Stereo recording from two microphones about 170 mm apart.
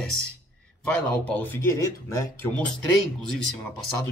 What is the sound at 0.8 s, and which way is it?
Speech, 10° left (ahead or behind).